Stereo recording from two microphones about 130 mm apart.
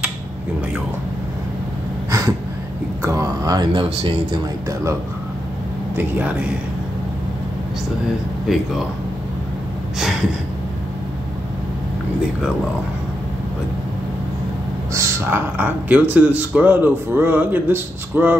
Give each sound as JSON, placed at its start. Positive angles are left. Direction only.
{"t": 2.0, "sound": "a sound", "side_deg": -25}
{"t": 3.0, "sound": "speech", "side_deg": -25}
{"t": 5.9, "sound": "a man's voice", "side_deg": -10}
{"t": 8.5, "sound": "speech", "side_deg": 0}
{"t": 15.0, "sound": "a man's voice", "side_deg": -20}